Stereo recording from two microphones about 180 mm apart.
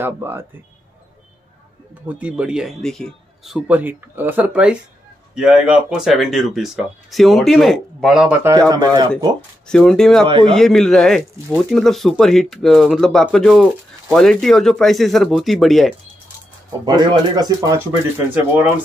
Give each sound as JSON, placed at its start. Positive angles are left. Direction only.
{"t": 0.0, "sound": "speech", "side_deg": -10}
{"t": 2.0, "sound": "speech", "side_deg": -5}
{"t": 3.5, "sound": "speech", "side_deg": -10}
{"t": 8.6, "sound": "speech", "side_deg": -20}
{"t": 9.7, "sound": "speech", "side_deg": 5}
{"t": 10.2, "sound": "speech", "side_deg": -30}
{"t": 10.5, "sound": "speech", "side_deg": 0}
{"t": 16.8, "sound": "speech", "side_deg": -25}